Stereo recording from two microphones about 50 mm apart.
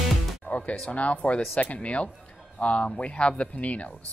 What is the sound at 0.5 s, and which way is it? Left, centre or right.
A man's voice, left.